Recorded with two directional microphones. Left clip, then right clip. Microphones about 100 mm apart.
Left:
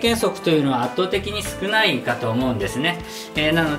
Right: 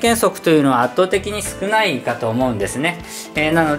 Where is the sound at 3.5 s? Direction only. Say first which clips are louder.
Right 4 dB; centre (ahead or behind).